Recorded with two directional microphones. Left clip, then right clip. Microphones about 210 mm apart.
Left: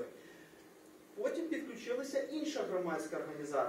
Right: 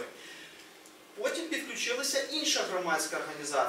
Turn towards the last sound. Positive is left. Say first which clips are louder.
# right 5 dB
turn(degrees=10)  # may be behind; listen again after turning